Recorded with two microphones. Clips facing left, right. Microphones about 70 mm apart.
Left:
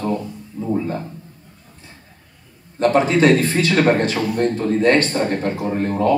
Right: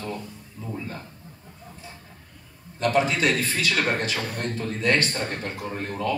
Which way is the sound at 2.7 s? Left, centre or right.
Left.